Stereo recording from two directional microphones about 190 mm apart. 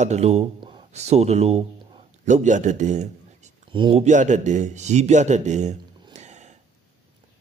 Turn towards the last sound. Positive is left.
turn(degrees=-35)  # may be behind; listen again after turning